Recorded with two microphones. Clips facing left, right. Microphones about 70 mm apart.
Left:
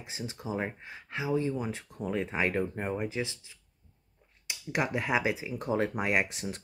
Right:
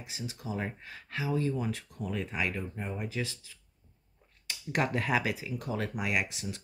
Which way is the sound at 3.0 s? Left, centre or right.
Left.